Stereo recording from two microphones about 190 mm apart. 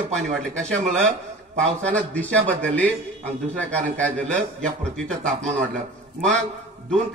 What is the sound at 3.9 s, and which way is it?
A man's voice, 5° left (ahead or behind).